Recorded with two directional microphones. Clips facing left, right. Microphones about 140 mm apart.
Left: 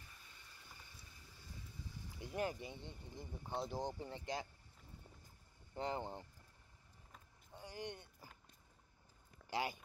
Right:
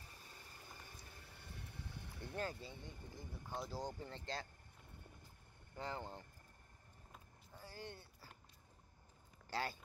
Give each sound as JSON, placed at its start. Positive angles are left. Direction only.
{"t": 0.8, "sound": "a sound", "side_deg": -60}
{"t": 2.3, "sound": "speech", "side_deg": 15}
{"t": 5.8, "sound": "speech", "side_deg": 20}
{"t": 7.5, "sound": "vehicle", "side_deg": 15}
{"t": 9.5, "sound": "speech", "side_deg": 15}